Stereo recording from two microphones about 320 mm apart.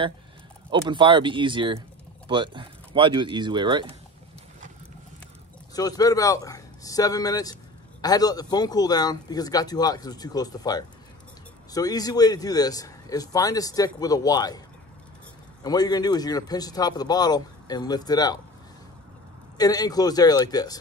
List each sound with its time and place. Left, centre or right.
0.7 s speech: centre
5.8 s a man's voice: centre
15.6 s a man's voice: centre
19.5 s a man's voice: centre